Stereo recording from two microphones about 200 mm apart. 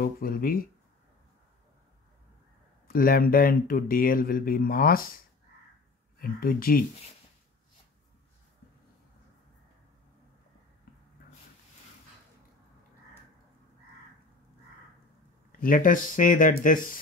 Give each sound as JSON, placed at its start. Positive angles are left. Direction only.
{"t": 0.0, "sound": "speech", "side_deg": 50}
{"t": 2.9, "sound": "speech", "side_deg": 45}
{"t": 6.1, "sound": "speech", "side_deg": 45}
{"t": 15.6, "sound": "speech", "side_deg": 45}